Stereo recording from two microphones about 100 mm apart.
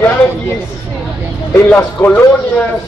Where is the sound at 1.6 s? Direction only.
20° left (ahead or behind).